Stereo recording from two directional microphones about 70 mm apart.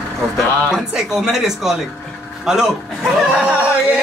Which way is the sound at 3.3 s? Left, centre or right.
Right.